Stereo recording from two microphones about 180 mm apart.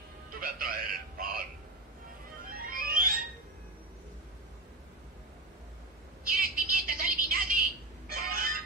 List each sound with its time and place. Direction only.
0.3 s speech: 55° right (ahead or behind)
2.4 s music: 55° right (ahead or behind)
6.2 s telephone: 55° right (ahead or behind)